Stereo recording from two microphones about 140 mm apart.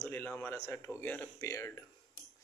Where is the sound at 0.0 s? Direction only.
15° left (ahead or behind).